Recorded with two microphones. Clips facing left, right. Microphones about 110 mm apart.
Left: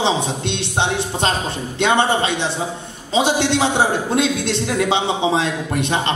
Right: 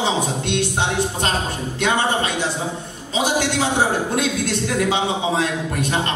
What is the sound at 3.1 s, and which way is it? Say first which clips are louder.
A man's voice: left 3 dB; 25° left (ahead or behind).